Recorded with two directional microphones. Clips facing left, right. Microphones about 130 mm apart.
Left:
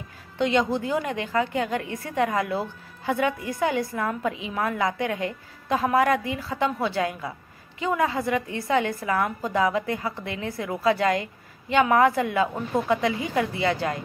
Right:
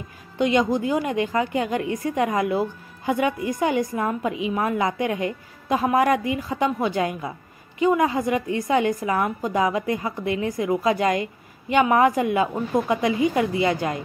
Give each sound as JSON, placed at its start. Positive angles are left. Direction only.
{"t": 0.4, "sound": "a woman's voice", "side_deg": -15}